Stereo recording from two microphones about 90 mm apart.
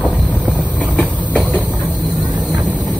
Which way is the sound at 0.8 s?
15° left (ahead or behind).